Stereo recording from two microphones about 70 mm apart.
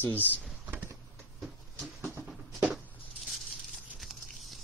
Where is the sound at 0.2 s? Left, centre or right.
Left.